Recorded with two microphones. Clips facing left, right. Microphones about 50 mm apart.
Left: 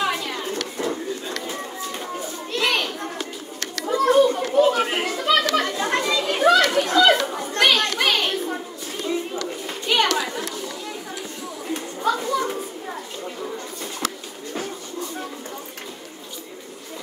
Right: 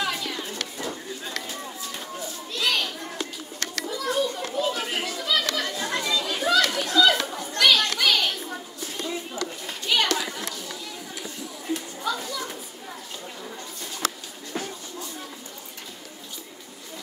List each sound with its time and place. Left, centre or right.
0.5 s a sound: left
2.5 s children playing: left
9.8 s chatter: left
11.7 s children playing: left